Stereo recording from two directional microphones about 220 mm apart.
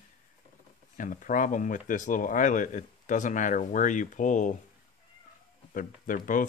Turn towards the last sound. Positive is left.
turn(degrees=35)  # may be behind; listen again after turning